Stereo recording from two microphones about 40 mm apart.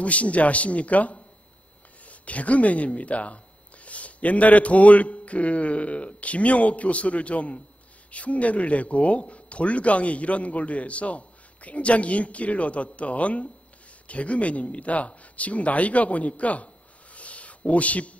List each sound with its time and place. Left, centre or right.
0.0 s speech: left